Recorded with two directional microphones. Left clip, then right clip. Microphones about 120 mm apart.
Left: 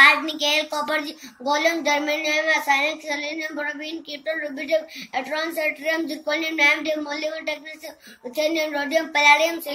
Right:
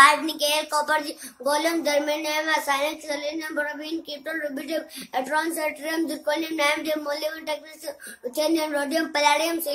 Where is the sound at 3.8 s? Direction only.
45° right (ahead or behind).